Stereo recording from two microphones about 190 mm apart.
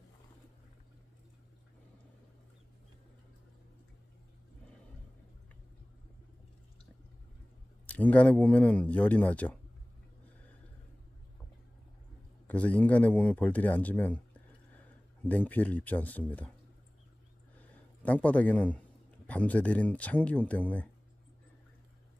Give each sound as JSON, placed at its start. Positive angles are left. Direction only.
{"t": 7.8, "sound": "speech", "side_deg": 5}
{"t": 12.4, "sound": "speech", "side_deg": 5}
{"t": 18.0, "sound": "speech", "side_deg": 5}